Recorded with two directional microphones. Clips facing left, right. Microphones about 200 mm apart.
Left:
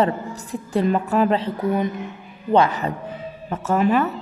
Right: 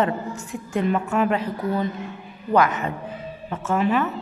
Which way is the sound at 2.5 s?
30° left (ahead or behind).